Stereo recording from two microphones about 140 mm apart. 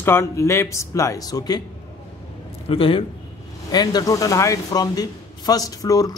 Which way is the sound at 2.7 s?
40° left (ahead or behind).